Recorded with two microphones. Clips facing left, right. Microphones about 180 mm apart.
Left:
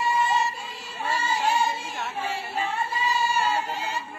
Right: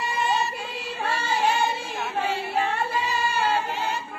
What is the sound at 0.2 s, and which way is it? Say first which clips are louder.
Child singing: even; 65° right (ahead or behind).